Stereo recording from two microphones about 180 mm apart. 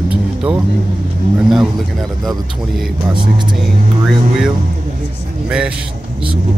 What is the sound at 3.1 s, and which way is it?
Speech, 25° right (ahead or behind).